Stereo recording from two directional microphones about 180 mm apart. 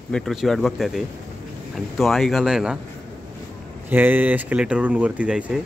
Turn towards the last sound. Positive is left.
turn(degrees=-5)  # may be behind; listen again after turning